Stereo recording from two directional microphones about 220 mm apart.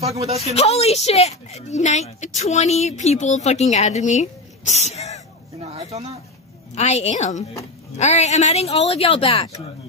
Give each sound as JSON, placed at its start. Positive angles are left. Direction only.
{"t": 0.0, "sound": "speech", "side_deg": -30}
{"t": 0.6, "sound": "a woman's voice", "side_deg": 30}
{"t": 5.6, "sound": "a sound", "side_deg": -30}
{"t": 6.7, "sound": "a woman's voice", "side_deg": 30}